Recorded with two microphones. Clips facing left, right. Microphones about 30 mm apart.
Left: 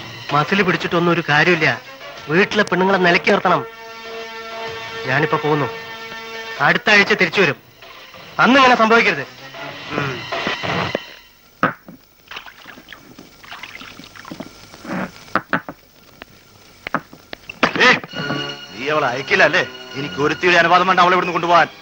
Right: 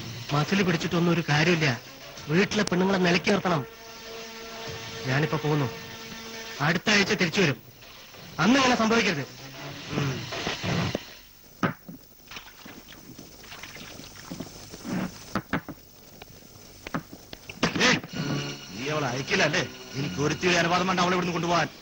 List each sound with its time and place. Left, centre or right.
0.0 s radio: left
11.6 s a sound: left
12.3 s rowboat: left
16.8 s music: left